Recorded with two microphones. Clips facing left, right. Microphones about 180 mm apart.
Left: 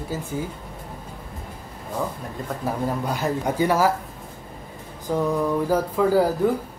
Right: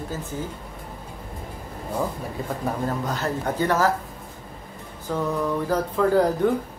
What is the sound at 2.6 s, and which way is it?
Speech, 10° left (ahead or behind).